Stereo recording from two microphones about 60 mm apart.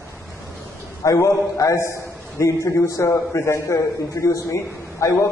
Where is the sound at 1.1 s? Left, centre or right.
Left.